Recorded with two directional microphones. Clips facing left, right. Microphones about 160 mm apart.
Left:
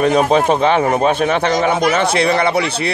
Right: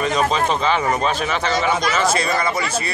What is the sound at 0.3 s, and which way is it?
Speech, 60° left (ahead or behind).